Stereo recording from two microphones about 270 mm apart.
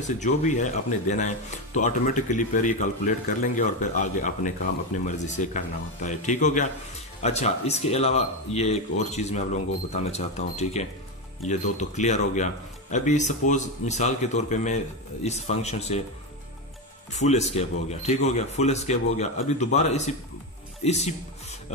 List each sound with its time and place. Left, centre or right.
0.2 s speech: left
17.1 s speech: left